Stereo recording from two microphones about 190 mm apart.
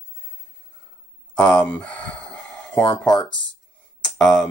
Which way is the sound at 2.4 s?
5° left (ahead or behind).